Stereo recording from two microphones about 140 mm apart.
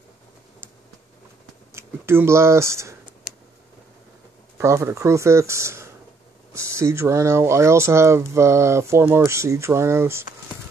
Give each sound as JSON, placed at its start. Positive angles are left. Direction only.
{"t": 1.7, "sound": "speech", "side_deg": -20}
{"t": 4.6, "sound": "speech", "side_deg": -20}